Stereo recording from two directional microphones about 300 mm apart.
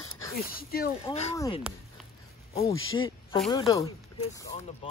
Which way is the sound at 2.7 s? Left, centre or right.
Left.